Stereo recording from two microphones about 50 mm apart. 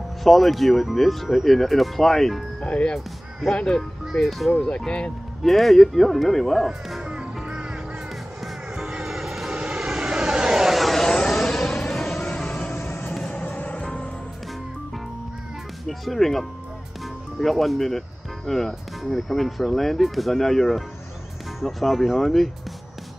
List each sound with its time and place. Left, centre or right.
0.2 s speech: centre
2.6 s speech: centre
4.1 s speech: centre
4.6 s speech: centre
5.4 s speech: centre
7.0 s music: centre
9.0 s vehicle: centre
12.4 s music: left
12.8 s vehicle: left
15.9 s speech: centre